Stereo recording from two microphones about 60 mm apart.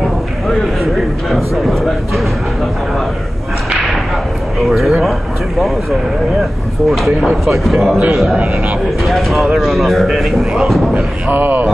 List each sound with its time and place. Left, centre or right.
0.5 s speech: centre
4.6 s speech: centre
11.2 s speech: right